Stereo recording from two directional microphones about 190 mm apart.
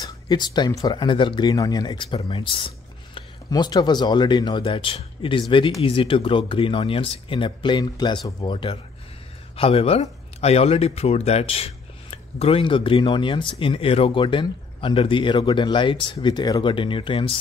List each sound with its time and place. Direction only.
0.0 s speech: 20° left (ahead or behind)